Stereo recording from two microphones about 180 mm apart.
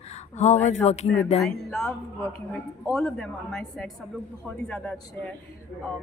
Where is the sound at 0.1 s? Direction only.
40° left (ahead or behind).